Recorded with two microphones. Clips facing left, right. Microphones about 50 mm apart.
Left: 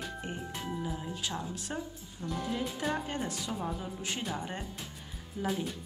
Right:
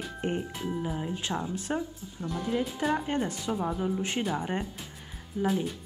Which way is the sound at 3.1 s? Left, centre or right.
Right.